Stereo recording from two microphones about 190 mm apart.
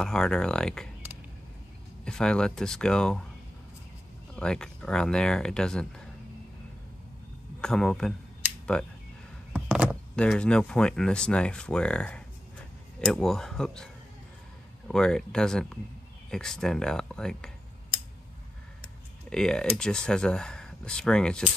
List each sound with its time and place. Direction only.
0.0 s speech: 5° left (ahead or behind)
2.0 s speech: 5° left (ahead or behind)
4.4 s speech: 5° left (ahead or behind)
7.6 s speech: 5° left (ahead or behind)
9.5 s door: 5° right (ahead or behind)
10.1 s speech: 5° left (ahead or behind)
14.9 s speech: 5° left (ahead or behind)
19.2 s speech: 5° left (ahead or behind)